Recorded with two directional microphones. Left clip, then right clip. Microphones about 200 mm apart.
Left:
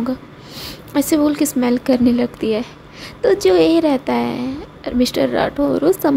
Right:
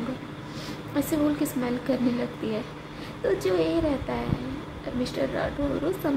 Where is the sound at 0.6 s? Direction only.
50° left (ahead or behind).